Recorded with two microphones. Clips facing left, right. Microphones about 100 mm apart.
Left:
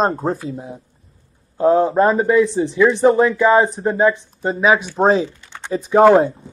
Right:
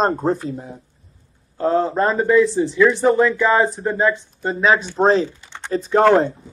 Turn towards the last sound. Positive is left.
turn(degrees=10)  # may be behind; listen again after turning